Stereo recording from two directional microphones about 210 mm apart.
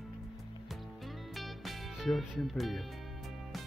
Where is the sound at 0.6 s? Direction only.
Centre (ahead or behind).